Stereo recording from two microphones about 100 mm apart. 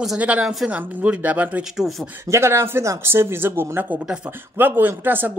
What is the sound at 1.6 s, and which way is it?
Speech, 5° right (ahead or behind).